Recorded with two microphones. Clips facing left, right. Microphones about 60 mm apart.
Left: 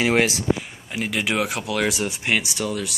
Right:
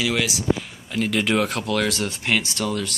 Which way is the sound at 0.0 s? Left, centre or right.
Left.